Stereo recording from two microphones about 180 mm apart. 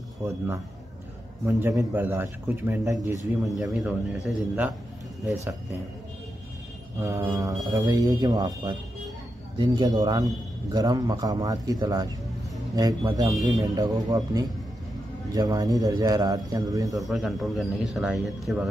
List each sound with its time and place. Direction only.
1.4 s speech: 15° right (ahead or behind)
3.4 s speech: centre (ahead or behind)
7.0 s speech: 15° right (ahead or behind)
16.9 s speech: centre (ahead or behind)